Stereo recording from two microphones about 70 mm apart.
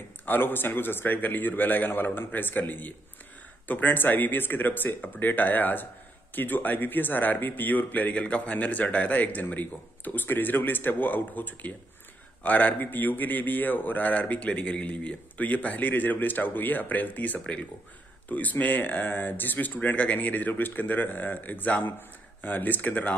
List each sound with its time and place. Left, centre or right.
0.2 s speech: left